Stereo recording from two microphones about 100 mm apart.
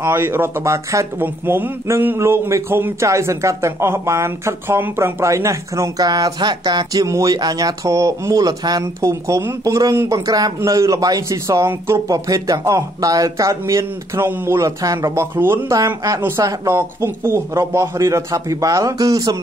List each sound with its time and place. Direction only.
0.0 s a man's voice: 20° right (ahead or behind); by 19.3 s 35° right (ahead or behind)